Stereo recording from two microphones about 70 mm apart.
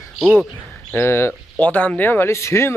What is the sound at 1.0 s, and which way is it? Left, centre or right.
Speech, left.